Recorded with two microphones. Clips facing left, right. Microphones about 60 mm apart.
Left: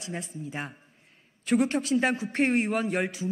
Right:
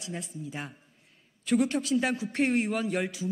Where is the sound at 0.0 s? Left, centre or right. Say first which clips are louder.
Left 2 dB; left.